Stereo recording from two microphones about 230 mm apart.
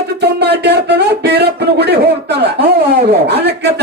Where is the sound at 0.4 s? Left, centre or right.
Right.